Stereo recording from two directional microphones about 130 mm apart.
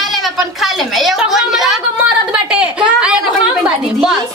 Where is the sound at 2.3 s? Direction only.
10° right (ahead or behind).